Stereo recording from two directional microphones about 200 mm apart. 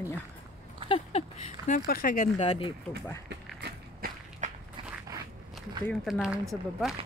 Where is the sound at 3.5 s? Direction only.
55° right (ahead or behind).